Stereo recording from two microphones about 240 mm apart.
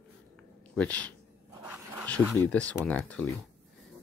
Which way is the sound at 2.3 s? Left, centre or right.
Centre.